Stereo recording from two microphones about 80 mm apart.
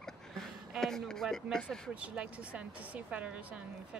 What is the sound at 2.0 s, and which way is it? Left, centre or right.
A woman's voice, centre.